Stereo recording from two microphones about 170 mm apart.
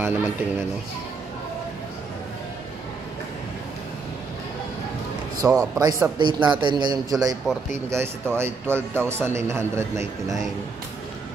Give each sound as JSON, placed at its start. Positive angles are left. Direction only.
{"t": 0.0, "sound": "a man's voice", "side_deg": -15}
{"t": 5.4, "sound": "a man's voice", "side_deg": -20}